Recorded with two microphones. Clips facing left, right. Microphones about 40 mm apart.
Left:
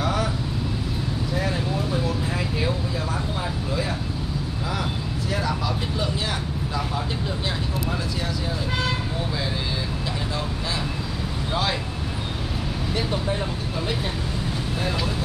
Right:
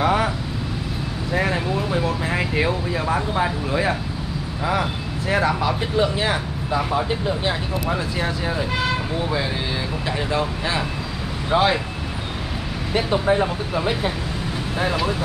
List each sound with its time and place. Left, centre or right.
0.0 s vehicle: right
1.3 s a sound: right
5.3 s speech: right
11.5 s speech: right
12.9 s speech: right